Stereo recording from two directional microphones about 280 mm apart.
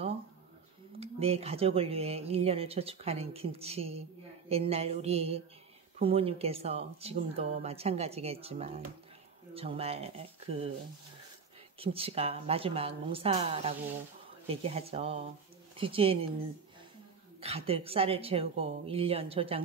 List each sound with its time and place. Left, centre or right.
0.9 s speech: right
11.8 s speech: centre
17.4 s speech: right